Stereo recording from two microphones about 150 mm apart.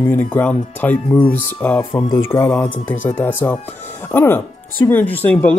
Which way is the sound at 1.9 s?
35° left (ahead or behind).